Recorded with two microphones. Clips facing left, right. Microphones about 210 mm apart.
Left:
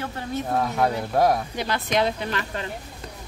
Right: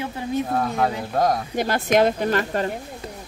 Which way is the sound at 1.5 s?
50° right (ahead or behind).